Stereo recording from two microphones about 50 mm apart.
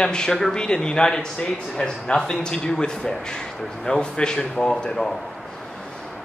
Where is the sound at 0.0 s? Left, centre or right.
Centre.